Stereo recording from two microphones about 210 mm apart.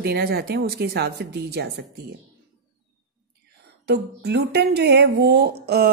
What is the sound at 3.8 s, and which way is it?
Speech, 50° right (ahead or behind).